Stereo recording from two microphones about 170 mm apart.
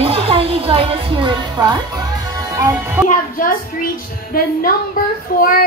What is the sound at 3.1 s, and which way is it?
Speech, 55° left (ahead or behind).